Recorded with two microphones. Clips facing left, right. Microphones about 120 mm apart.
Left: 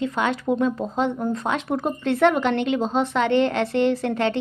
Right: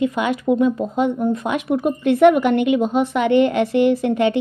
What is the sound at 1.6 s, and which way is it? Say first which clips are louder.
Speech: right 5 dB; 40° left (ahead or behind).